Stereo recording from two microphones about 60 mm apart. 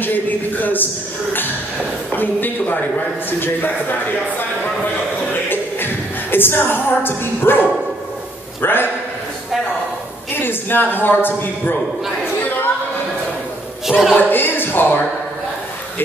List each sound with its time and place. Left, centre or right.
0.0 s a man's voice: left
2.1 s a man's voice: left
5.3 s music: left
6.3 s a man's voice: left
10.3 s a man's voice: left
13.8 s a woman's voice: centre
14.3 s speech: left